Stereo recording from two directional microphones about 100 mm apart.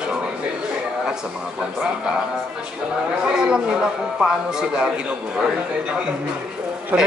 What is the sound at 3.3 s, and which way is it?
Speech, 10° right (ahead or behind).